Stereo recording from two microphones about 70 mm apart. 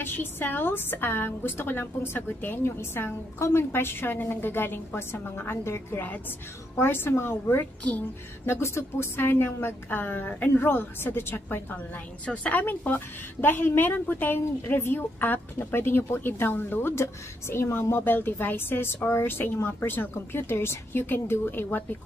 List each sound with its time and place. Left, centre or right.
0.0 s a woman's voice: left